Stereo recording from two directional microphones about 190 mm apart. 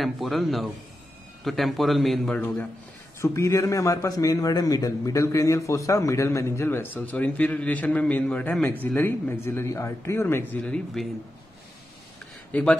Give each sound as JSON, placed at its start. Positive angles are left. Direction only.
{"t": 0.0, "sound": "a man's voice", "side_deg": 0}
{"t": 3.2, "sound": "a man's voice", "side_deg": 15}
{"t": 12.5, "sound": "a man's voice", "side_deg": 10}